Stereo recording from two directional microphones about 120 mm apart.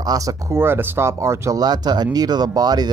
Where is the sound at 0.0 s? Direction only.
30° right (ahead or behind).